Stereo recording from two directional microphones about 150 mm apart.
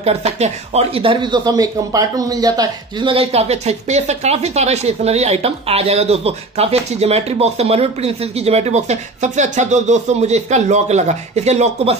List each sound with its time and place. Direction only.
0.0 s speech: 45° right (ahead or behind)